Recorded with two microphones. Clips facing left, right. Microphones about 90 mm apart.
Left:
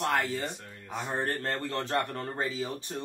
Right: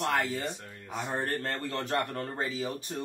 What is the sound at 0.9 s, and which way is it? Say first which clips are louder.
Speech: even; 35° left (ahead or behind).